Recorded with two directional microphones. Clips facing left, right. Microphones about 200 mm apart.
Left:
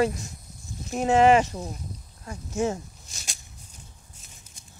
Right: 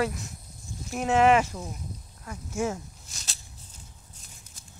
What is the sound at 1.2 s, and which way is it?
Speech, 35° left (ahead or behind).